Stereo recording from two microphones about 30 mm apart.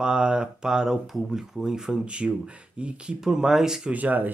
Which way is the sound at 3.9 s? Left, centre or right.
Right.